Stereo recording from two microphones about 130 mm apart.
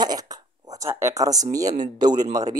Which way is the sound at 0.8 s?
20° right (ahead or behind).